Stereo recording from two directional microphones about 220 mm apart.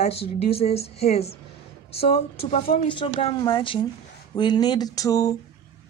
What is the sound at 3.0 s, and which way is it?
A woman's voice, 25° left (ahead or behind).